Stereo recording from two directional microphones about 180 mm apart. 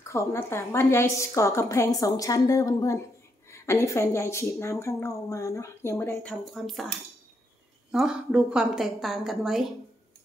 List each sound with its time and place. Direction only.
0.1 s a woman's voice: 15° left (ahead or behind)
6.4 s a woman's voice: centre (ahead or behind)
7.9 s a woman's voice: centre (ahead or behind)